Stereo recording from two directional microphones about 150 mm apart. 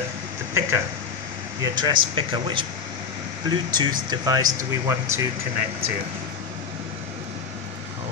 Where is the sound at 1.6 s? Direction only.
30° right (ahead or behind).